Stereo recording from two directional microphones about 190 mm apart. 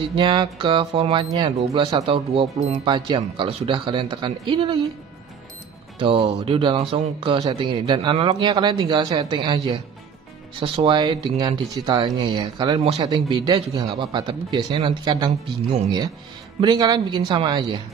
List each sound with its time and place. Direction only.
0.0 s a man's voice: 25° right (ahead or behind)
5.9 s a man's voice: 30° right (ahead or behind)
10.6 s a man's voice: 25° right (ahead or behind)